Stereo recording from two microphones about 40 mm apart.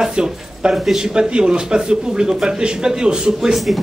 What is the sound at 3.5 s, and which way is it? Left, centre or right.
Speech, centre.